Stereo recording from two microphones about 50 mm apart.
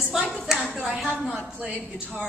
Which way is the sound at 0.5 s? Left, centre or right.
Centre.